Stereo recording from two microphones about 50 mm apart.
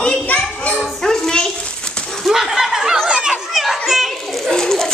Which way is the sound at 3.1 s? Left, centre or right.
Centre.